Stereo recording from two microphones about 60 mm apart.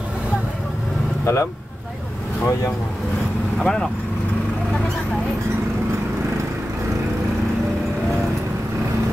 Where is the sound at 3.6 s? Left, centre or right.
Centre.